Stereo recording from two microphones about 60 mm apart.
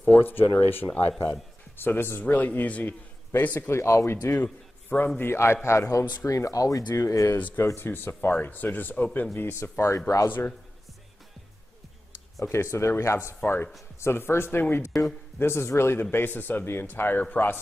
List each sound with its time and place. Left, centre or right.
0.1 s a man's voice: left
3.7 s a man's voice: left
4.8 s a man's voice: left
5.3 s a man's voice: left
7.0 s a man's voice: left
7.3 s a man's voice: left
9.3 s a man's voice: left
9.8 s speech: left
12.7 s a man's voice: left
13.9 s a man's voice: left